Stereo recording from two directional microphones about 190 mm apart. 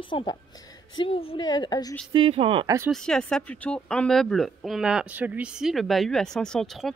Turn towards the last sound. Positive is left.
turn(degrees=0)  # may be behind; listen again after turning